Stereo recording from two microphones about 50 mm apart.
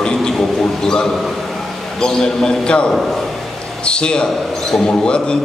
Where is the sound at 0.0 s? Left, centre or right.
Centre.